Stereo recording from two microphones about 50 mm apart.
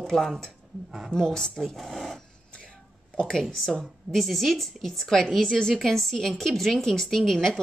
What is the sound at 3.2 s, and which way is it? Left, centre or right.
A woman's voice, centre.